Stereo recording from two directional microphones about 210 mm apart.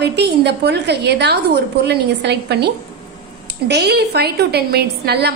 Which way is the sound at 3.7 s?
50° right (ahead or behind).